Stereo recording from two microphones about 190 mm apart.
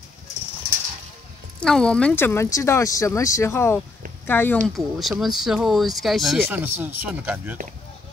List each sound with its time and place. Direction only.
1.6 s speech: 5° left (ahead or behind)
4.7 s speech: centre (ahead or behind)